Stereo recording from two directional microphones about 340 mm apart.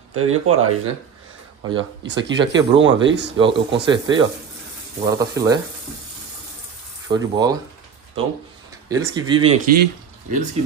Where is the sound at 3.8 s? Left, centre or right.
Centre.